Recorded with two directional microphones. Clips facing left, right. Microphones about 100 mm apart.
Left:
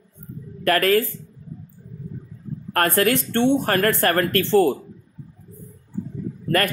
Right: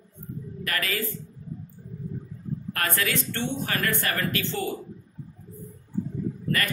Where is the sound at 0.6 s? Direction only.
60° left (ahead or behind).